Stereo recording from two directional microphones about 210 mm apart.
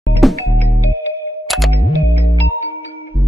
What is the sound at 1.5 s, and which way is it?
Music, centre (ahead or behind).